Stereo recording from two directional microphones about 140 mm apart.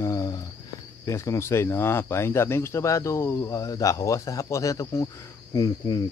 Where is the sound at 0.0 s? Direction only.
25° left (ahead or behind).